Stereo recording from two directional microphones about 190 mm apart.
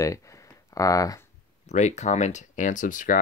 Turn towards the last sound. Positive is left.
turn(degrees=45)  # may be behind; listen again after turning